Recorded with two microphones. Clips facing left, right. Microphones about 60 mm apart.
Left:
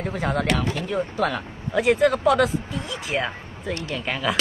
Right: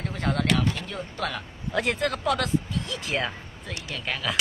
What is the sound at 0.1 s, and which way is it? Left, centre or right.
Speech, centre.